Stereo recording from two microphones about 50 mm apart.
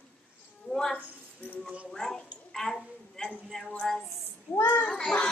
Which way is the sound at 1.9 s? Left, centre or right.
Centre.